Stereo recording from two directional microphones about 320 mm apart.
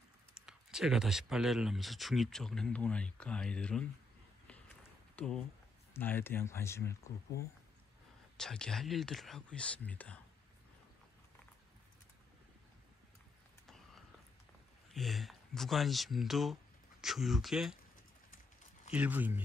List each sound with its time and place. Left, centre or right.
0.5 s speech: centre
5.1 s speech: centre
7.3 s speech: left
8.4 s speech: centre
13.7 s a sound: centre
14.9 s speech: centre
18.9 s speech: centre